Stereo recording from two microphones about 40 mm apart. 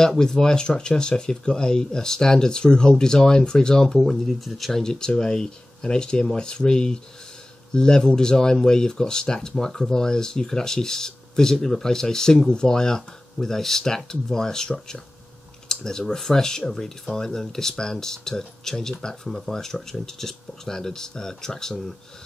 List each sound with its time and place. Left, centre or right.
0.2 s speech: centre
4.0 s speech: centre
4.8 s speech: centre